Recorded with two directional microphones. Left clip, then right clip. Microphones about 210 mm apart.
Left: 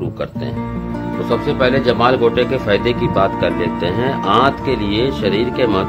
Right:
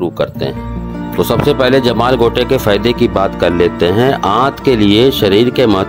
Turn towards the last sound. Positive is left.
turn(degrees=-45)  # may be behind; listen again after turning